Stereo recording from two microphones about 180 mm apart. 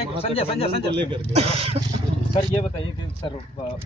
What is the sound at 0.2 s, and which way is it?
Speech, 35° left (ahead or behind).